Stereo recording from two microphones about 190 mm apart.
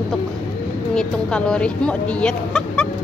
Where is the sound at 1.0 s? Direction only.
5° left (ahead or behind).